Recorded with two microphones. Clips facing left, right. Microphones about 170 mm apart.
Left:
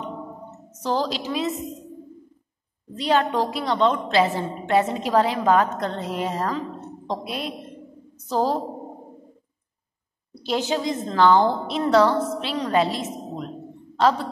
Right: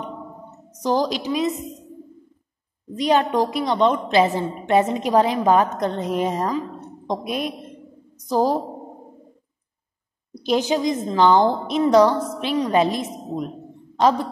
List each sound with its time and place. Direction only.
0.8 s a woman's voice: 15° right (ahead or behind)
2.9 s a woman's voice: 15° right (ahead or behind)
10.3 s a woman's voice: 15° right (ahead or behind)